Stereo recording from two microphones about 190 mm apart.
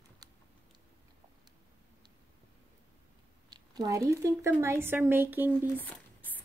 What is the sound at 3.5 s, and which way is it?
A woman's voice, 20° right (ahead or behind).